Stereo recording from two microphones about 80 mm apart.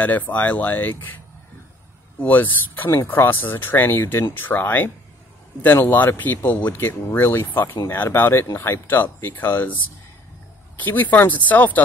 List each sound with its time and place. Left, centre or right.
0.0 s speech: left
10.8 s speech: left